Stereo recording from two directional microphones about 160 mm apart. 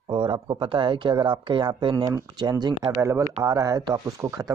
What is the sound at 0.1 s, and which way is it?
Speech, 30° right (ahead or behind).